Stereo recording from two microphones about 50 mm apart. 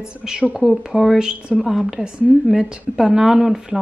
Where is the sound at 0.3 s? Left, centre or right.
Centre.